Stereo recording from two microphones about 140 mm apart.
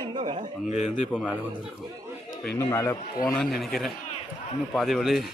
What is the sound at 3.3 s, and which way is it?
Speech, centre (ahead or behind).